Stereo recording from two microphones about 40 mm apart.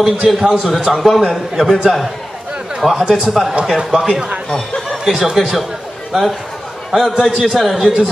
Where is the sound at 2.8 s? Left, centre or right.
Centre.